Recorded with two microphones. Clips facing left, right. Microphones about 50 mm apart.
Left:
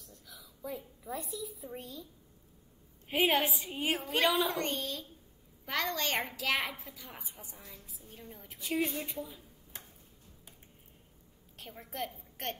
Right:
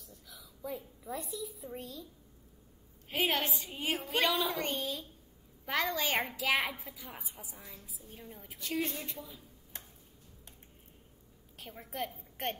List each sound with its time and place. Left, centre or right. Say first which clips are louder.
0.0 s a woman's voice: even; centre
3.1 s a woman's voice: left 3 dB; centre
8.5 s a woman's voice: left 3 dB; centre
11.5 s a woman's voice: right 1 dB; centre
12.4 s a woman's voice: right 2 dB; centre